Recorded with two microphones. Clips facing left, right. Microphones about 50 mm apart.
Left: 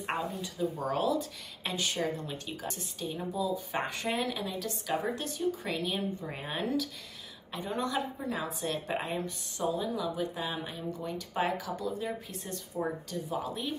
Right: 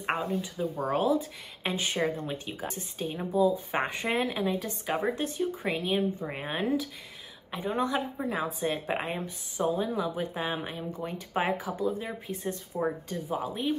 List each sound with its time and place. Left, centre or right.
0.0 s a woman's voice: centre
0.7 s speech: right
1.0 s a woman's voice: right